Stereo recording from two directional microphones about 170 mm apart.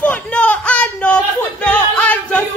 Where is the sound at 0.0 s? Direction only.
5° left (ahead or behind).